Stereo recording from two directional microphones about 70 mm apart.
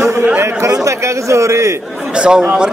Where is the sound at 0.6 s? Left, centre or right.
Right.